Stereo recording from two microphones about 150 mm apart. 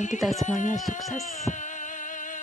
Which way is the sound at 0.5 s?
55° left (ahead or behind).